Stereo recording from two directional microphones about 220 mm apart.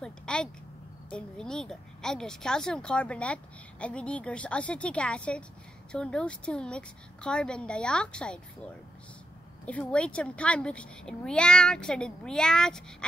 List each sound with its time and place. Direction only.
0.0 s a sound: 5° left (ahead or behind)
1.1 s a child's voice: 5° left (ahead or behind)
9.7 s a child's voice: 5° left (ahead or behind)